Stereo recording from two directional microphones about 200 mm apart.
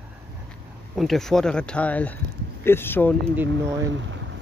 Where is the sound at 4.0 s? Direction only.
70° right (ahead or behind).